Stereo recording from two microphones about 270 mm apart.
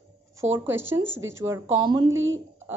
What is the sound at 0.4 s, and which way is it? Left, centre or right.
Speech, centre.